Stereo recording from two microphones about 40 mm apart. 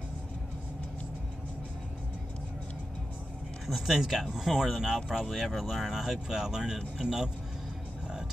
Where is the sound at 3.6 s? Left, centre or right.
Centre.